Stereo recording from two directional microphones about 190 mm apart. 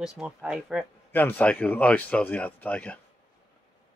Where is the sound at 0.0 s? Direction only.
5° right (ahead or behind).